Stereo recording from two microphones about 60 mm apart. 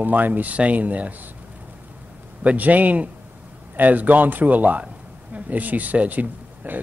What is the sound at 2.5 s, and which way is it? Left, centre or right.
A man's voice, right.